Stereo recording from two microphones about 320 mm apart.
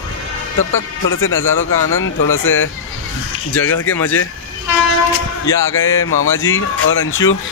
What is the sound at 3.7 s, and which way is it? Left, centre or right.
Speech, left.